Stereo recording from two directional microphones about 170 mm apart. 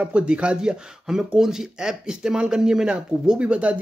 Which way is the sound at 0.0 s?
5° right (ahead or behind).